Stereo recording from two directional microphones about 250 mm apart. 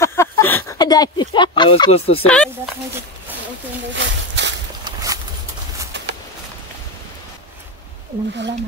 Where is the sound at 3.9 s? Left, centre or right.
Right.